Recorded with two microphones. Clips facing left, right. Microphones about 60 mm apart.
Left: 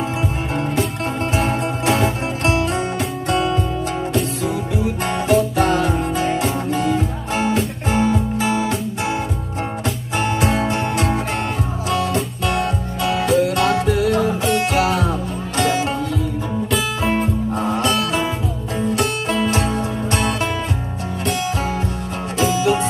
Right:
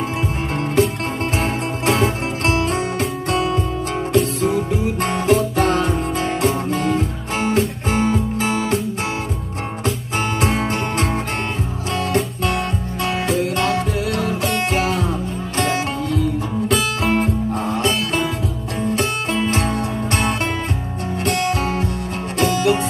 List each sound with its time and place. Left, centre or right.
1.4 s music: right
4.1 s music: right
10.4 s music: right
14.0 s music: right
14.7 s music: right
16.6 s music: right
17.6 s music: left
18.9 s music: right
21.2 s music: right